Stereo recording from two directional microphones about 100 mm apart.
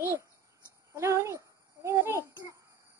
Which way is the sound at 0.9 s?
30° right (ahead or behind).